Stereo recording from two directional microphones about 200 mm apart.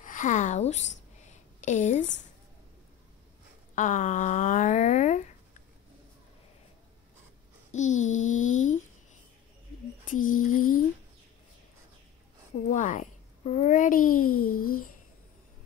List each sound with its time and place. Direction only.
0.0 s a sound: 40° left (ahead or behind)
3.7 s speech: 40° left (ahead or behind)
7.7 s a sound: 35° left (ahead or behind)
10.2 s speech: 40° left (ahead or behind)
12.6 s a child's voice: 40° left (ahead or behind)
14.2 s a child's voice: 90° left